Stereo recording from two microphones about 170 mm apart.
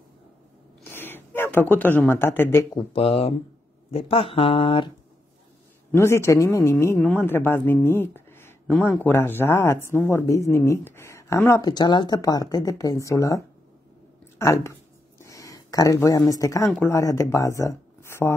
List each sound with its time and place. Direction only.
0.8 s a sound: 10° left (ahead or behind)
2.7 s speech: 30° left (ahead or behind)
5.9 s speech: 15° left (ahead or behind)
14.4 s speech: 15° left (ahead or behind)